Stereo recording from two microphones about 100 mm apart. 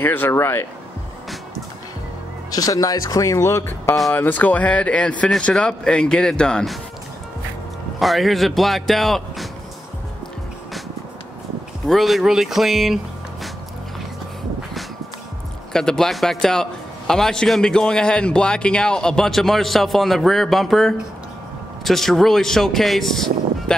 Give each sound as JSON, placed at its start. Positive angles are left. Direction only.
{"t": 0.0, "sound": "speech", "side_deg": 20}
{"t": 2.5, "sound": "speech", "side_deg": 35}
{"t": 4.1, "sound": "speech", "side_deg": 15}
{"t": 8.0, "sound": "a man's voice", "side_deg": 0}
{"t": 11.9, "sound": "speech", "side_deg": 0}
{"t": 15.7, "sound": "a man's voice", "side_deg": 5}